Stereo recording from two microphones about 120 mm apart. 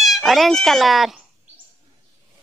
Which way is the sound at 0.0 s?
Centre (ahead or behind).